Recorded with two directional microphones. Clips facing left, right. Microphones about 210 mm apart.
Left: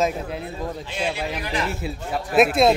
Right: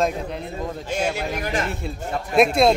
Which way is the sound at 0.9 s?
45° right (ahead or behind).